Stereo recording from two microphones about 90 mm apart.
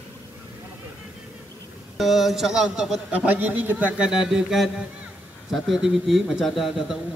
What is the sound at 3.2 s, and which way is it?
Speech, 20° right (ahead or behind).